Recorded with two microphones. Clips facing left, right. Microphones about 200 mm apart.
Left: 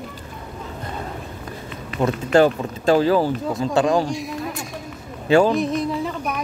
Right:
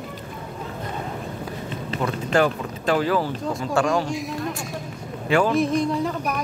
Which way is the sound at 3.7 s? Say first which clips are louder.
Left 3 dB; 20° left (ahead or behind).